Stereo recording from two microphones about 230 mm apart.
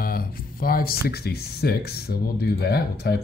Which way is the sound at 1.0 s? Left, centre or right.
Left.